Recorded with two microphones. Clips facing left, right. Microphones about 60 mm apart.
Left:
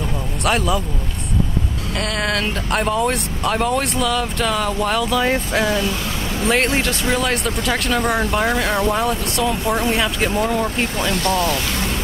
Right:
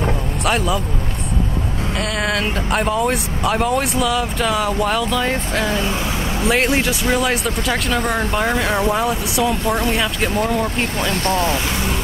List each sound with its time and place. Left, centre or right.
0.5 s speech: centre
2.0 s speech: centre
5.7 s speech: right
6.4 s speech: centre
11.0 s speech: right